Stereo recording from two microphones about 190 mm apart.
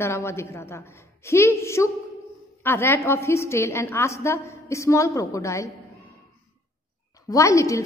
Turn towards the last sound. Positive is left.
turn(degrees=15)  # may be behind; listen again after turning